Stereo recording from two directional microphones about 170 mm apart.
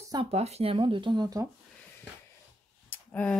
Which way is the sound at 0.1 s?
35° right (ahead or behind).